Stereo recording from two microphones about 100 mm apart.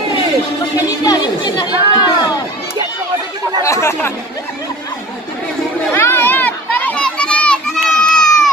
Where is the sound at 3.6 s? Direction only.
30° left (ahead or behind).